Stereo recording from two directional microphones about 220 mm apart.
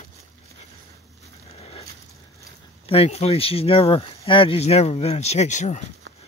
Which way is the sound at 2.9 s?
25° left (ahead or behind).